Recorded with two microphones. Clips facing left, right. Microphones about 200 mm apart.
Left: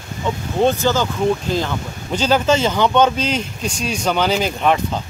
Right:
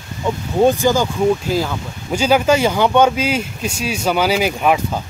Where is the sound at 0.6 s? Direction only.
10° right (ahead or behind).